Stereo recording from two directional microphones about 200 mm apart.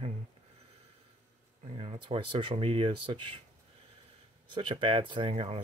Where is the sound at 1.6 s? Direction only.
30° right (ahead or behind).